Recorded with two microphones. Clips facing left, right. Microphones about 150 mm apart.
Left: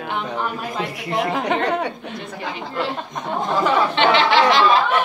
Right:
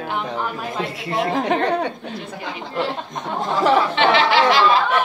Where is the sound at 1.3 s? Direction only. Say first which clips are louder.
Right 3 dB; 45° right (ahead or behind).